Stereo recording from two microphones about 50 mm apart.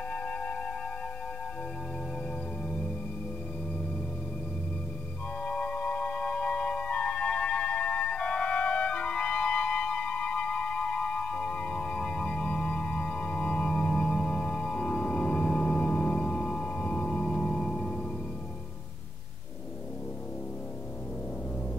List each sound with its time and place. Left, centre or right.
0.1 s music: left
5.4 s organ: left